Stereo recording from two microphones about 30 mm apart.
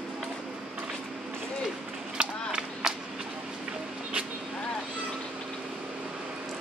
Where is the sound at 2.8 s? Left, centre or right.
Right.